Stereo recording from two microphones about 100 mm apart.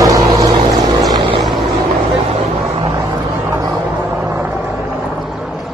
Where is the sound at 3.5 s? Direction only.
35° right (ahead or behind).